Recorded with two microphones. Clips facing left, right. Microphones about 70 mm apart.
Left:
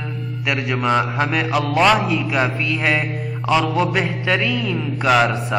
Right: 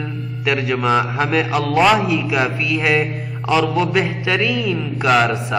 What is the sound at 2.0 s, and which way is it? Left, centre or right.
Speech, left.